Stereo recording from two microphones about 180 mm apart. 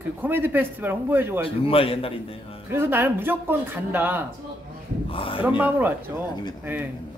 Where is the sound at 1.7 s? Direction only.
30° left (ahead or behind).